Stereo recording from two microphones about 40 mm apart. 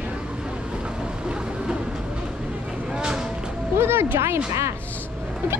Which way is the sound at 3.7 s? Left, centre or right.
Right.